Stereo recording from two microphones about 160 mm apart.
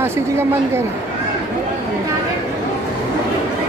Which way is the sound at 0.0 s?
15° right (ahead or behind).